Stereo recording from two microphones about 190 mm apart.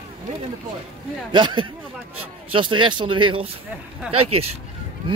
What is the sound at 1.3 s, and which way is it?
Speech, 25° right (ahead or behind).